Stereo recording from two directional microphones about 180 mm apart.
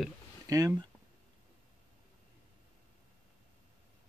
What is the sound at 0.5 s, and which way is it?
Speech, 20° right (ahead or behind).